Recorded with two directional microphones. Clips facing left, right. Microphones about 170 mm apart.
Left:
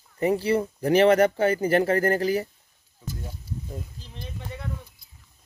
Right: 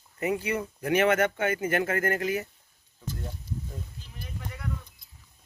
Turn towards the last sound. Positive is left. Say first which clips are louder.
# left 2 dB
turn(degrees=25)  # may be behind; listen again after turning